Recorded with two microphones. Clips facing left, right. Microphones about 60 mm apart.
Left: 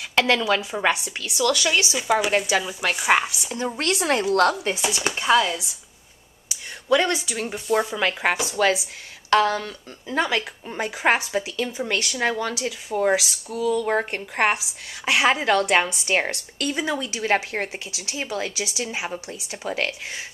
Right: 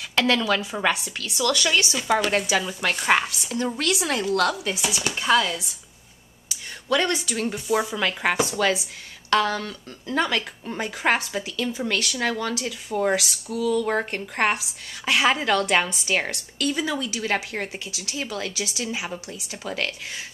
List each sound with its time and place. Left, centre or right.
0.1 s a sound: centre
0.5 s speech: centre
1.3 s speech: centre
3.7 s speech: left
5.1 s speech: centre
7.6 s speech: centre
8.0 s speech: centre